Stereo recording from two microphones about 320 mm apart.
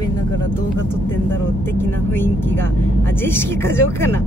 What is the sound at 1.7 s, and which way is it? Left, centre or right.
Speech, centre.